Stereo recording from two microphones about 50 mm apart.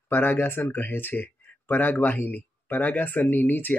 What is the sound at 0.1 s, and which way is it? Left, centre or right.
A man's voice, left.